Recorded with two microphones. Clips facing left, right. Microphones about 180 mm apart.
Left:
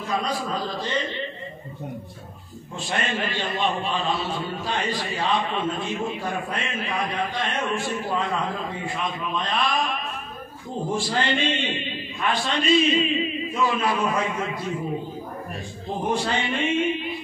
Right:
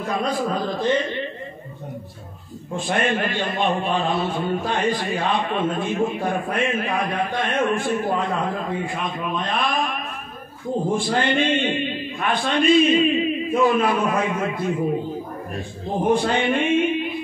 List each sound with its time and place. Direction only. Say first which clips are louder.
0.0 s a man's voice: right 4 dB; 55° right (ahead or behind)
2.7 s a man's voice: right 6 dB; 50° right (ahead or behind)
11.0 s a man's voice: right 4 dB; 55° right (ahead or behind)
16.0 s a man's voice: right 6 dB; 50° right (ahead or behind)